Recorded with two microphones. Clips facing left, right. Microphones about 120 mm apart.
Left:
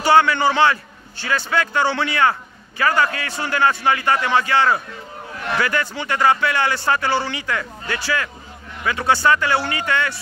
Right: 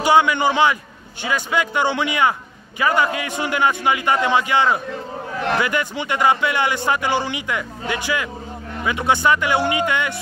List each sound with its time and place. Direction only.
0.0 s a man's voice: 15° right (ahead or behind)